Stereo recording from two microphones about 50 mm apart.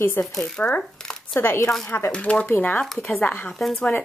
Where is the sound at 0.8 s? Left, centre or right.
Centre.